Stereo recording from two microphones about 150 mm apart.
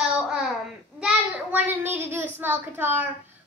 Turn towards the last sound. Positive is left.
turn(degrees=-15)  # may be behind; listen again after turning